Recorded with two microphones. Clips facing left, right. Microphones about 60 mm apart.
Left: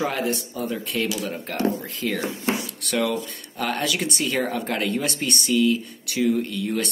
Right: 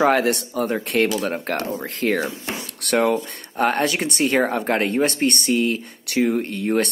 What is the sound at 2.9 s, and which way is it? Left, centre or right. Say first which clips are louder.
Speech: right 5 dB; right.